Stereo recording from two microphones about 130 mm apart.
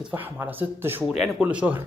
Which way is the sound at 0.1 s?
15° right (ahead or behind).